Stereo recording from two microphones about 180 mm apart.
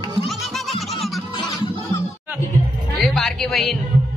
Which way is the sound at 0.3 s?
Centre (ahead or behind).